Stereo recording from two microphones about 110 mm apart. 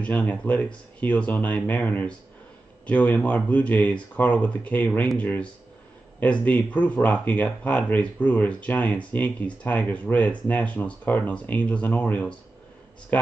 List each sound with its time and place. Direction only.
0.0 s speech: 15° left (ahead or behind)